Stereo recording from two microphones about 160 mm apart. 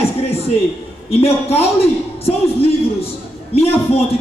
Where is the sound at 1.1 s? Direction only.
40° left (ahead or behind).